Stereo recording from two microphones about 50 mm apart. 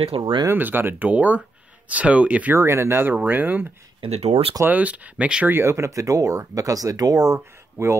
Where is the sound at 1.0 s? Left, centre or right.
Right.